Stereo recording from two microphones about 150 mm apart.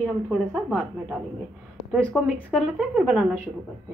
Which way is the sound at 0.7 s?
10° left (ahead or behind).